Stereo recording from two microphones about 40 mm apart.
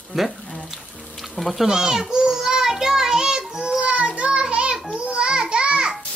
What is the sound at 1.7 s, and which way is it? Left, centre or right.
Child singing, centre.